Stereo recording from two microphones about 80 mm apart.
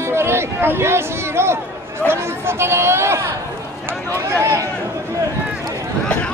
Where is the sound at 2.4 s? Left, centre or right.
Right.